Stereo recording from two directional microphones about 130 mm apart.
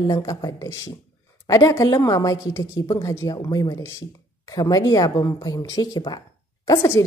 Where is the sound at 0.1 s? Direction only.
30° left (ahead or behind).